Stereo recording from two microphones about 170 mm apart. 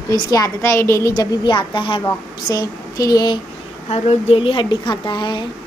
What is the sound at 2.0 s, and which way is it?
A woman's voice, 20° left (ahead or behind).